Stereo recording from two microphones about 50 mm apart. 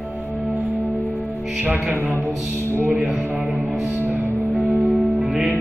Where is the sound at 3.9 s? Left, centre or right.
Right.